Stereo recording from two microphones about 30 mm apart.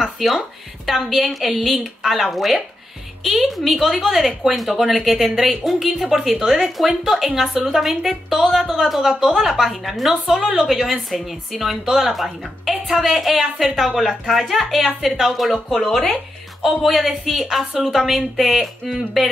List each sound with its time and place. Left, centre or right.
0.0 s a woman's voice: centre
13.7 s a woman's voice: centre
13.9 s a woman's voice: centre